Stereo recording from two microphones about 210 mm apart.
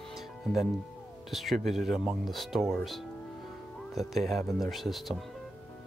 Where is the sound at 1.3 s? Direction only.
Centre (ahead or behind).